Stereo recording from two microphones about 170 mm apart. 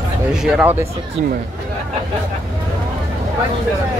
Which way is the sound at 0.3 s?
5° right (ahead or behind).